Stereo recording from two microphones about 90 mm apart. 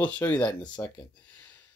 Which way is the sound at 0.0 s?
15° left (ahead or behind).